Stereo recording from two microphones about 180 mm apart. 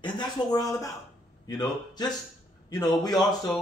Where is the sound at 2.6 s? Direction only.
20° left (ahead or behind).